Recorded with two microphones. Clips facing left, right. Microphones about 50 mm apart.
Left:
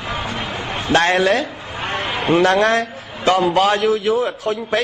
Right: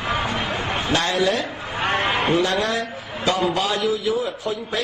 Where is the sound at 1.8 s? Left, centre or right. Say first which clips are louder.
Right 2 dB; right.